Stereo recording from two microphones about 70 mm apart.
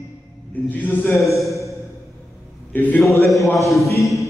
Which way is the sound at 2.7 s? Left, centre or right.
Left.